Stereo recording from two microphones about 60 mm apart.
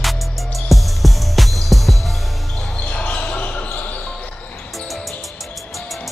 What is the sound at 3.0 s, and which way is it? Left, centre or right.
Basketball bounce, left.